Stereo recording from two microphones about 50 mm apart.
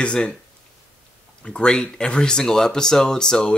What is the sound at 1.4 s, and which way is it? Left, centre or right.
Speech, centre.